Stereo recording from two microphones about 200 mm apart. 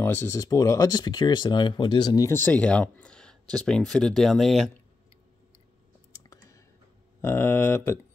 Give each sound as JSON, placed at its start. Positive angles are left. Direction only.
{"t": 0.0, "sound": "speech", "side_deg": 10}
{"t": 6.1, "sound": "clicking", "side_deg": 15}
{"t": 7.2, "sound": "speech", "side_deg": 10}